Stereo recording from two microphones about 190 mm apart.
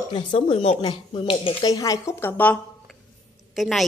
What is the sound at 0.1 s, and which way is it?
A woman's voice, 25° left (ahead or behind).